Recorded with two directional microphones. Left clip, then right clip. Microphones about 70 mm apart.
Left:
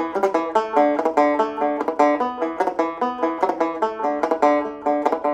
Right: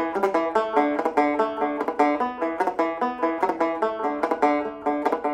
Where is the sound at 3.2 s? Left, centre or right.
Left.